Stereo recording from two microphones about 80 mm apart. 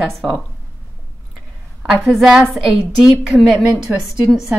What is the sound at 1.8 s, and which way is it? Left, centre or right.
A woman's voice, centre.